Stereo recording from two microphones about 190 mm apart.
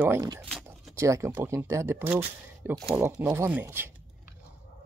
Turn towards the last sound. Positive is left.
turn(degrees=-10)  # may be behind; listen again after turning